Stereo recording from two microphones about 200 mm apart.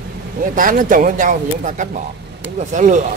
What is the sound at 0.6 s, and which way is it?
Speech, 40° right (ahead or behind).